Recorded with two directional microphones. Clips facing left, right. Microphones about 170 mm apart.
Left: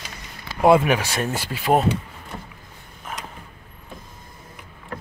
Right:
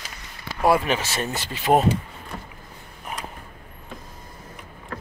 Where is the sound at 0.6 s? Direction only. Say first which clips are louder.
Left 4 dB; 20° left (ahead or behind); by 1.9 s centre (ahead or behind).